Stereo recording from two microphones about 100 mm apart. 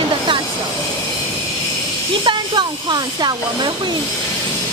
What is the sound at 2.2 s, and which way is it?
Speech, 50° right (ahead or behind).